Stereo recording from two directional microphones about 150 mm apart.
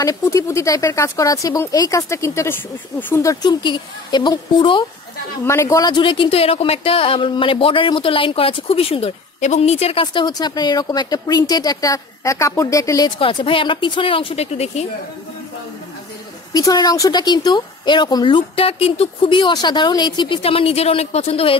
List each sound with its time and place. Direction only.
0.0 s speech: 25° left (ahead or behind)
5.4 s speech: 15° left (ahead or behind)
13.2 s speech: 35° left (ahead or behind)
16.5 s speech: 25° left (ahead or behind)
20.4 s speech: 40° left (ahead or behind)